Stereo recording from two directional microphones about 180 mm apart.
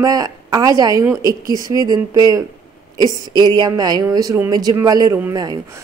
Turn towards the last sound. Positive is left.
turn(degrees=-20)  # may be behind; listen again after turning